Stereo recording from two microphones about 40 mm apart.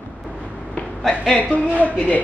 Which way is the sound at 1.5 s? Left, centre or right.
Right.